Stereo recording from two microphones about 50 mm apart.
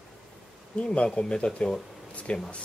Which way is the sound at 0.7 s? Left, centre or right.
Left.